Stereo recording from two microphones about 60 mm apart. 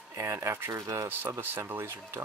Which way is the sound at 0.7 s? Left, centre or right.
Right.